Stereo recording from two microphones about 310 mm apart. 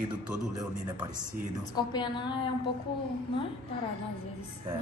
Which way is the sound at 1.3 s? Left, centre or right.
Centre.